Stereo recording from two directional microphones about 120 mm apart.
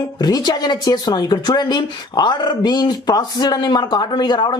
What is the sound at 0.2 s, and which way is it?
Speech, 35° left (ahead or behind).